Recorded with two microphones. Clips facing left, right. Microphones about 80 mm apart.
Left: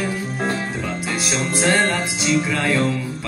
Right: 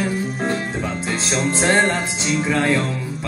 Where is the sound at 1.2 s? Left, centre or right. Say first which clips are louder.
Right 2 dB; right.